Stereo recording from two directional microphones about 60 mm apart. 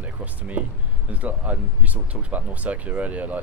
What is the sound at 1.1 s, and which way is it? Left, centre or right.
Speech, right.